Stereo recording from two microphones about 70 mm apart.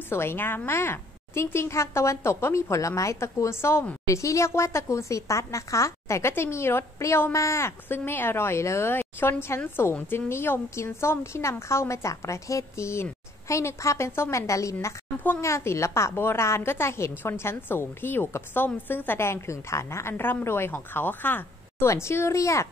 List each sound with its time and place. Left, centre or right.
0.1 s a woman's voice: left
21.7 s a woman's voice: left